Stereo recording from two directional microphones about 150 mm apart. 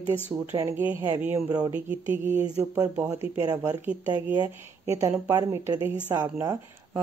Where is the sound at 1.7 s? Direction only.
10° right (ahead or behind).